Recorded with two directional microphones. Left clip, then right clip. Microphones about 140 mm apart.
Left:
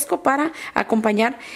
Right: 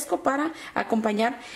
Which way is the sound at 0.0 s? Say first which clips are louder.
Left 5 dB; 30° left (ahead or behind).